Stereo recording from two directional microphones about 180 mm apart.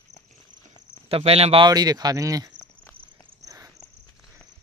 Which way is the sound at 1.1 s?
30° right (ahead or behind).